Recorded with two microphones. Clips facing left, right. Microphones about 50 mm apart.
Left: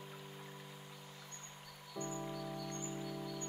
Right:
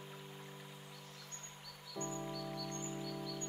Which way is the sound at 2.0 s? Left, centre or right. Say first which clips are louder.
Even; centre.